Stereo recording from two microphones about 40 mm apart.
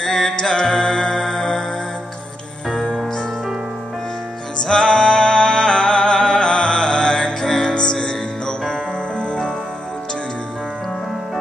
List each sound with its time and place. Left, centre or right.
0.0 s music: centre
4.6 s music: centre